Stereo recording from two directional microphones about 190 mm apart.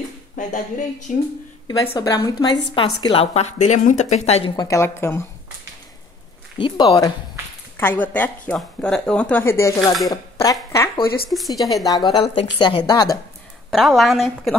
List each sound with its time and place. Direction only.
0.4 s speech: 40° left (ahead or behind)
1.7 s a woman's voice: 20° left (ahead or behind)
4.6 s speech: 15° left (ahead or behind)
6.6 s a woman's voice: 20° left (ahead or behind)
11.2 s speech: centre (ahead or behind)
11.8 s a woman's voice: 20° left (ahead or behind)
13.7 s speech: centre (ahead or behind)